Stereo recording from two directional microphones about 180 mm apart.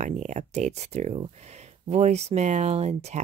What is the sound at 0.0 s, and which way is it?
Speech, 40° right (ahead or behind).